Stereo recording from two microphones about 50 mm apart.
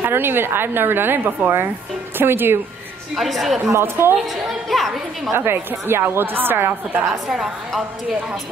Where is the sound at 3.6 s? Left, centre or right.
Right.